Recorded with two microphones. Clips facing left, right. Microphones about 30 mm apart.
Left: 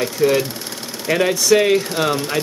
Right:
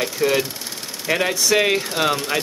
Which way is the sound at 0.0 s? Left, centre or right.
Centre.